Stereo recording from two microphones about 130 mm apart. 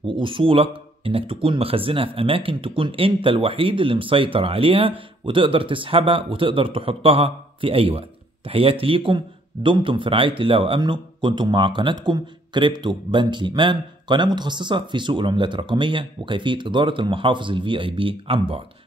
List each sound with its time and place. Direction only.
0.0 s speech: 40° right (ahead or behind)